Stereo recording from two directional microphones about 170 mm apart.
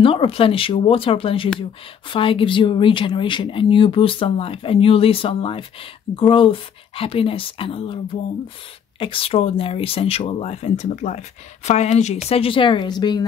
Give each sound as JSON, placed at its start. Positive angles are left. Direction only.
{"t": 0.0, "sound": "a woman's voice", "side_deg": 30}